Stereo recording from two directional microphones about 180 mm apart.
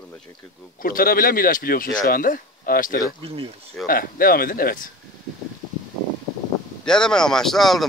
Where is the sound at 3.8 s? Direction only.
55° left (ahead or behind).